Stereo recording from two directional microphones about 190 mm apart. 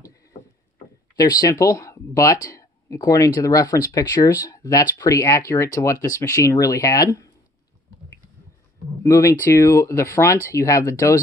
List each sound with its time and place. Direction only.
1.1 s speech: 20° left (ahead or behind)
9.0 s speech: 15° left (ahead or behind)